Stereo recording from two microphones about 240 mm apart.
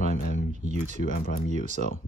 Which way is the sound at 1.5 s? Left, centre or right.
Right.